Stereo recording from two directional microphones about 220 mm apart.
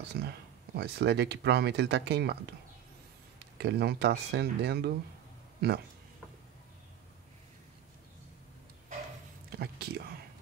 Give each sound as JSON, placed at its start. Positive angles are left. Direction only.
{"t": 0.1, "sound": "a sound", "side_deg": -45}
{"t": 0.7, "sound": "speech", "side_deg": -50}
{"t": 3.5, "sound": "speech", "side_deg": -50}
{"t": 9.5, "sound": "speech", "side_deg": -45}